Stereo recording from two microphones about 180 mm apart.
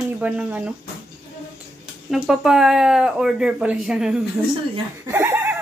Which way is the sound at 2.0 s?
5° right (ahead or behind).